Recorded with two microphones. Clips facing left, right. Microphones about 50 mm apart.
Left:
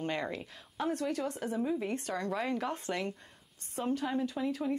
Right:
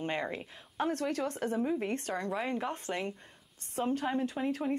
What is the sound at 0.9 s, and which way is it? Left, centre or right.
Speech, right.